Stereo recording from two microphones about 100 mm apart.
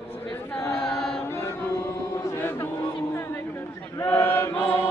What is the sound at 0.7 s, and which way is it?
Chant, 5° left (ahead or behind).